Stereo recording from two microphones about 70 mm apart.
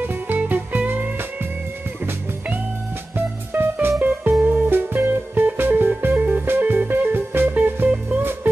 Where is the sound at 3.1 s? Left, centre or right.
Right.